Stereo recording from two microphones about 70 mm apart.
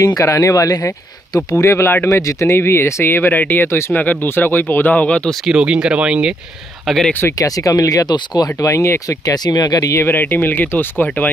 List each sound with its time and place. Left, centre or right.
0.0 s speech: left
1.6 s speech: left; by 5.3 s centre
5.5 s speech: centre
7.3 s speech: left
8.1 s speech: left
8.5 s speech: left
9.0 s speech: left
10.0 s speech: left